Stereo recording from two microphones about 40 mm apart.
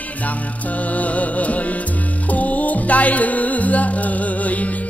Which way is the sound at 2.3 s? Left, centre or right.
Left.